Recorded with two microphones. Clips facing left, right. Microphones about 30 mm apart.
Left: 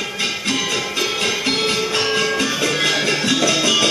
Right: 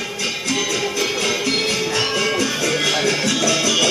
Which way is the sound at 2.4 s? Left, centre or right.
Left.